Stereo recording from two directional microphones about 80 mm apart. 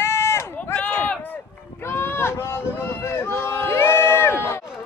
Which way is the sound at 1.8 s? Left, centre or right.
Left.